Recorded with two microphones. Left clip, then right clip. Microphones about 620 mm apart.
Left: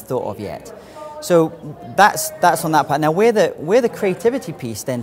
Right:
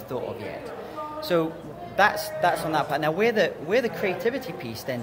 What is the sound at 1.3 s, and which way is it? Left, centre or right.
Speech, left.